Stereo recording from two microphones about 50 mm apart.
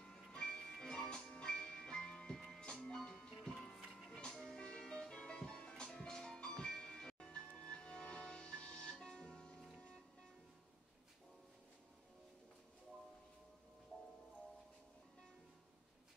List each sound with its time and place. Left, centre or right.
0.0 s music: centre